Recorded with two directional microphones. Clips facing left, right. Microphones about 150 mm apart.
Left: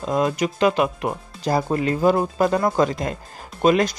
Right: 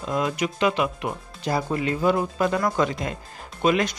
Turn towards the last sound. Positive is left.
turn(degrees=40)  # may be behind; listen again after turning